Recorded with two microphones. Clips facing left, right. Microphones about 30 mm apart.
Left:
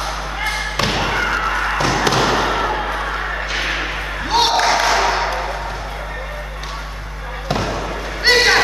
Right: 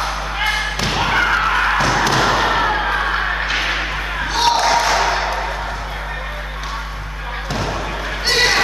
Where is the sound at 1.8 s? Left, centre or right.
Centre.